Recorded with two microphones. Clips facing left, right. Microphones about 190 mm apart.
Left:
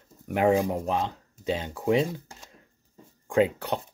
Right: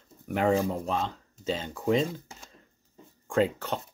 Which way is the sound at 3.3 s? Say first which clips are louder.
Left 3 dB; 15° left (ahead or behind).